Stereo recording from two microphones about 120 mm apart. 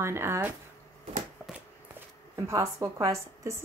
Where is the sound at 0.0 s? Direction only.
20° right (ahead or behind).